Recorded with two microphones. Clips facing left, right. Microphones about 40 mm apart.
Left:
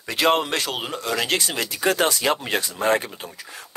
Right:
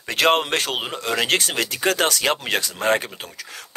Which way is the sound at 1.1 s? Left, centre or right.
Right.